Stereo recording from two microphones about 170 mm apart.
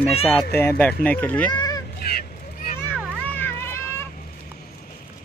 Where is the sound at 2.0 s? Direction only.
60° left (ahead or behind).